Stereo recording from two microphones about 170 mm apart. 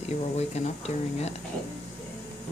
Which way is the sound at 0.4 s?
40° left (ahead or behind).